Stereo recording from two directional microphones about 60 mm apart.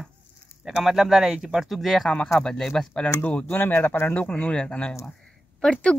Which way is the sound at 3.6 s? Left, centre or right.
Left.